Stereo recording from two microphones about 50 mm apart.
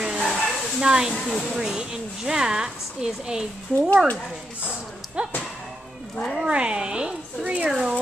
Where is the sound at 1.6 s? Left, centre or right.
Centre.